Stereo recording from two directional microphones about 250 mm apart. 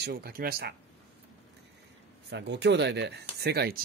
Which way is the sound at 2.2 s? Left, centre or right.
Right.